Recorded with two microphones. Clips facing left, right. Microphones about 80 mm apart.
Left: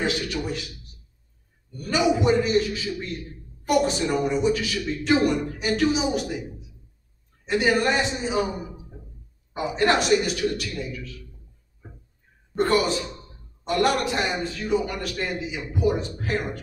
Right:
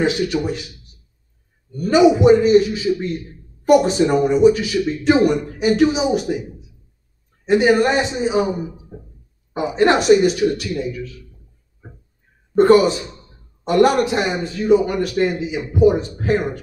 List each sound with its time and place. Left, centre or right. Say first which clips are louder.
0.0 s a man's voice: right 8 dB; right
1.8 s a man's voice: right 9 dB; right
7.4 s a man's voice: right 7 dB; centre
12.5 s a man's voice: right 10 dB; right